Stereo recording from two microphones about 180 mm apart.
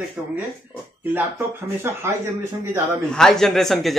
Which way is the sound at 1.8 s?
15° right (ahead or behind).